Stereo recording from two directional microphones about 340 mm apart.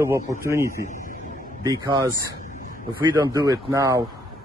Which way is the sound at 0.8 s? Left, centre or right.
Left.